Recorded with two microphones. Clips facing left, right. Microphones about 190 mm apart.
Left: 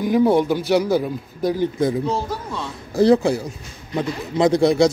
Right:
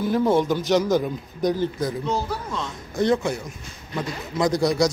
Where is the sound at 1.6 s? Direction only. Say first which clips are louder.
Left 5 dB; 25° left (ahead or behind).